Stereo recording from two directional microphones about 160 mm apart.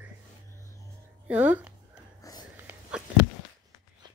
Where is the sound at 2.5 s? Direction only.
10° right (ahead or behind).